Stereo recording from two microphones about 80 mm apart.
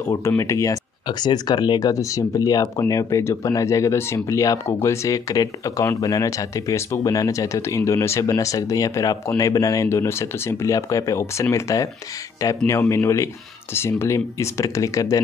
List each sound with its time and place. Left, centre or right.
0.0 s speech: left
1.0 s speech: left